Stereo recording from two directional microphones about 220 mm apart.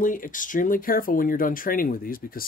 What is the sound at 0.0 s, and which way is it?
Speech, 35° left (ahead or behind).